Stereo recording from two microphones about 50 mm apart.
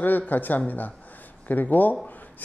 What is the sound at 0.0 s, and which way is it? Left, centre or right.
A woman's voice, left.